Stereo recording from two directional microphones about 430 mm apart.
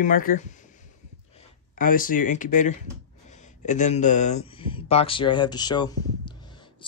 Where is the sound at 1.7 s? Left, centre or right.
Centre.